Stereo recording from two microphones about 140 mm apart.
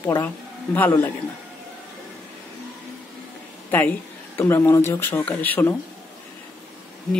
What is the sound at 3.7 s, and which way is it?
Speech, 15° left (ahead or behind).